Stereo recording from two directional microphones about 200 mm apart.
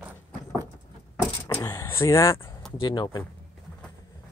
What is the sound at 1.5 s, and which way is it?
Power windows, 15° left (ahead or behind).